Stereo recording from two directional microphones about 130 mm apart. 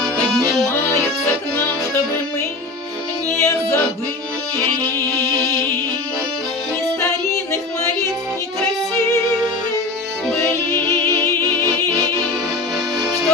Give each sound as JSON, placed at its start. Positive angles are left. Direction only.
{"t": 3.3, "sound": "music", "side_deg": 20}